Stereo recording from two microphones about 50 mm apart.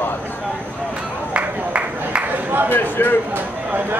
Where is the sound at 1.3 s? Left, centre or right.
Right.